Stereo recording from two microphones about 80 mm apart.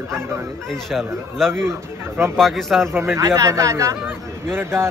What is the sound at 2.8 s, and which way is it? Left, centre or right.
A man's voice, right.